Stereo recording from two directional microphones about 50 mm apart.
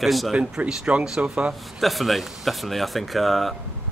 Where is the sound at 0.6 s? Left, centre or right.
Right.